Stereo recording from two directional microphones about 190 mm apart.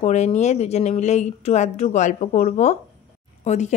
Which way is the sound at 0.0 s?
35° left (ahead or behind).